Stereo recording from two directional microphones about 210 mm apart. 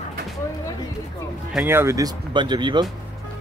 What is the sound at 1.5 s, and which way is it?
Speech, 10° right (ahead or behind).